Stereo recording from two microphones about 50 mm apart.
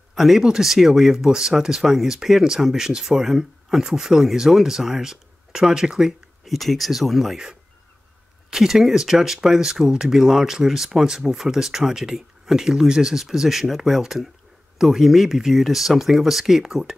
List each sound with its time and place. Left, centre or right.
0.1 s a sound: centre
0.4 s speech: centre
8.5 s speech: centre